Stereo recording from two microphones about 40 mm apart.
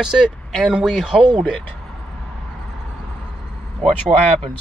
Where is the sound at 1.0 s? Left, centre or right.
Centre.